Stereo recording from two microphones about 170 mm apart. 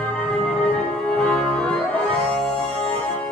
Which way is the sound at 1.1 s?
5° left (ahead or behind).